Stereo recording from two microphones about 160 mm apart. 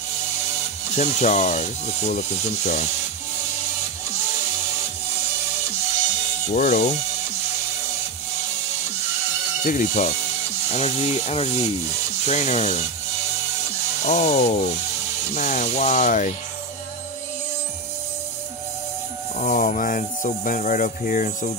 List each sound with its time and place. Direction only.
0.9 s speech: 45° left (ahead or behind)
6.5 s speech: 50° left (ahead or behind)
9.6 s speech: 50° left (ahead or behind)
14.0 s speech: 45° left (ahead or behind)
19.3 s speech: 55° left (ahead or behind)